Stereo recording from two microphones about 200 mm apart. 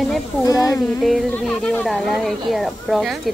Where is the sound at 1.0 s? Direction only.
Centre (ahead or behind).